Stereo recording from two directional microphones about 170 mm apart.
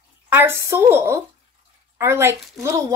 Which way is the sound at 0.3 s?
10° right (ahead or behind).